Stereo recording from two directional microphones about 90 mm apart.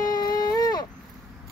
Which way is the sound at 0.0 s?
45° left (ahead or behind).